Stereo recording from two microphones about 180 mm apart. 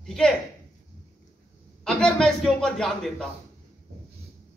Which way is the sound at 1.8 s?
5° left (ahead or behind).